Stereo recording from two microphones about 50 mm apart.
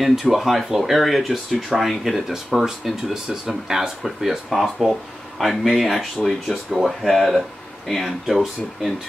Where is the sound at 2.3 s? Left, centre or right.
Centre.